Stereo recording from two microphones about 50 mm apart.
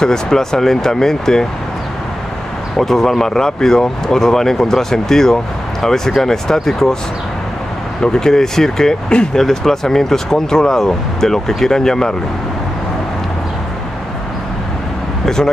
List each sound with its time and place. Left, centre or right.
0.0 s speech: centre
2.8 s speech: centre
8.0 s speech: centre
9.4 s speech: centre
15.2 s speech: centre